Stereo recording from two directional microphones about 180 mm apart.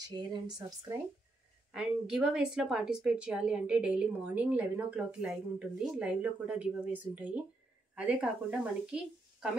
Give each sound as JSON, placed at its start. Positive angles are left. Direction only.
{"t": 0.0, "sound": "speech", "side_deg": -25}
{"t": 1.7, "sound": "a woman's voice", "side_deg": -5}